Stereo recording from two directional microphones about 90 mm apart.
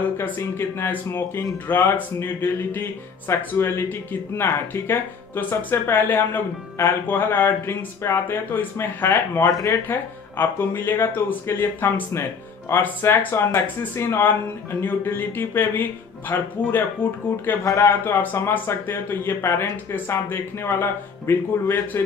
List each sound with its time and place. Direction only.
0.2 s speech: 25° left (ahead or behind)
9.4 s speech: 40° left (ahead or behind)
9.8 s speech: 25° left (ahead or behind)